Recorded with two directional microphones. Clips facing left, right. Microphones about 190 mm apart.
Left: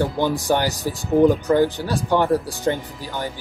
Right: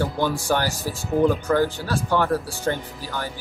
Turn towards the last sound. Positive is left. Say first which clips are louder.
# left 2 dB
turn(degrees=15)  # may be behind; listen again after turning